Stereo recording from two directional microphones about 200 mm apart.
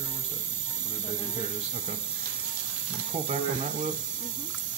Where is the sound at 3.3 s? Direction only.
35° right (ahead or behind).